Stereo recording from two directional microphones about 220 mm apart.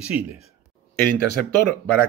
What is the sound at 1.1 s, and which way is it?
Speech, 50° left (ahead or behind).